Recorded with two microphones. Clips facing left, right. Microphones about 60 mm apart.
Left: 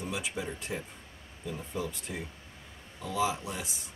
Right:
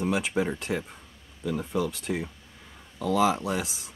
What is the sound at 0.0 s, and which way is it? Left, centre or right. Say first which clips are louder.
Speech: right 9 dB; right.